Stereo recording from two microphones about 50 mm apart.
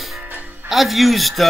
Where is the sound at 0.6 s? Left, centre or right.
Centre.